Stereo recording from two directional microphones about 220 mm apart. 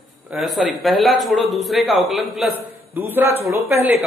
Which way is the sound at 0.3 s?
Centre (ahead or behind).